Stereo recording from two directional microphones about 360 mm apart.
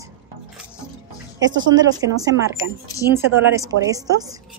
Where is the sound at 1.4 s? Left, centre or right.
Right.